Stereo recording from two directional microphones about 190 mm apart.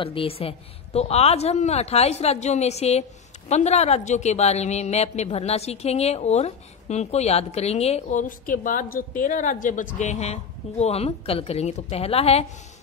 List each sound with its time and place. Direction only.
0.0 s a woman's voice: 30° left (ahead or behind)